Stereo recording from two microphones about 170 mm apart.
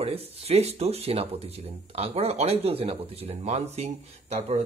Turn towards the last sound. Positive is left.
turn(degrees=-40)  # may be behind; listen again after turning